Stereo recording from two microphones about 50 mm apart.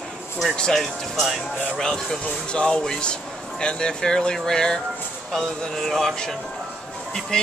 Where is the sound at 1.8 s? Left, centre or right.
Centre.